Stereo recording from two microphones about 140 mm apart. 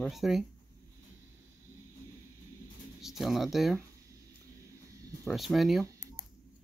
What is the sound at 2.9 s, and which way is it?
Speech, centre (ahead or behind).